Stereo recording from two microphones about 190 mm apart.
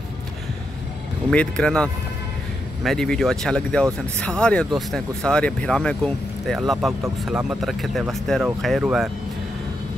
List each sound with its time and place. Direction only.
1.3 s speech: 5° left (ahead or behind)